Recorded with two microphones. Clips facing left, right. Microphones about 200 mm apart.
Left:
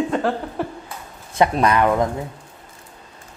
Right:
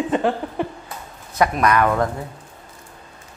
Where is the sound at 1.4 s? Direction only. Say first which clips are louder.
Left 1 dB; 25° left (ahead or behind).